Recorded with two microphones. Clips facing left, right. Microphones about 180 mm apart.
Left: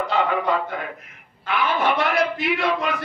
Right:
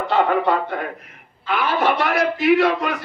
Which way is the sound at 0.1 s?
40° right (ahead or behind).